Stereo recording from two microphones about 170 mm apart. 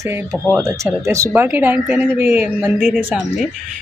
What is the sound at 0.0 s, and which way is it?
Speech, 15° right (ahead or behind).